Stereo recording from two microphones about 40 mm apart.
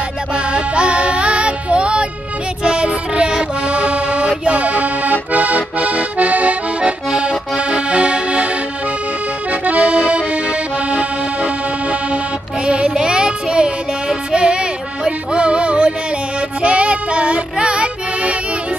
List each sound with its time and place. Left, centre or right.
0.3 s music: right
7.1 s accordion: right
9.5 s accordion: right
12.6 s music: right